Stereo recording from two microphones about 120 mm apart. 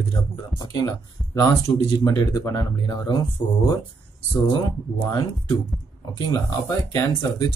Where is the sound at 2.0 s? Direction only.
35° left (ahead or behind).